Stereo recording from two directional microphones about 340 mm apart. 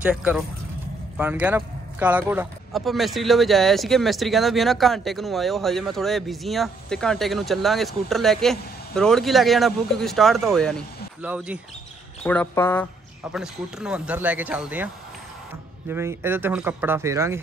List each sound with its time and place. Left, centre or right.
0.0 s a man's voice: centre
15.9 s speech: centre